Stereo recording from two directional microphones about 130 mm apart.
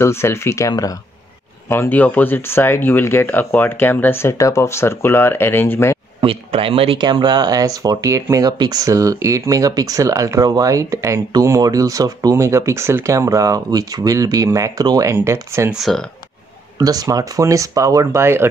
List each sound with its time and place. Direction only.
0.0 s speech: 20° left (ahead or behind)
1.7 s speech: 15° left (ahead or behind)
6.2 s speech: 45° right (ahead or behind); by 15.7 s 20° right (ahead or behind)
15.7 s speech: centre (ahead or behind)
16.7 s speech: 30° right (ahead or behind)